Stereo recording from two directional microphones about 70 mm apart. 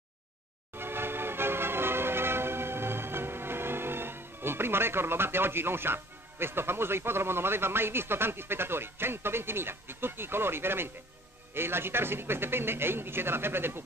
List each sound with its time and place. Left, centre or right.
0.7 s train horn: right
11.5 s a man's voice: right